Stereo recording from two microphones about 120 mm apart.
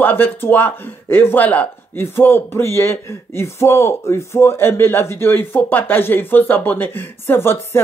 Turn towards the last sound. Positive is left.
turn(degrees=20)  # may be behind; listen again after turning